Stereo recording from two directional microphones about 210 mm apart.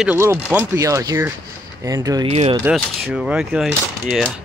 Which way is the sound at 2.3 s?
30° right (ahead or behind).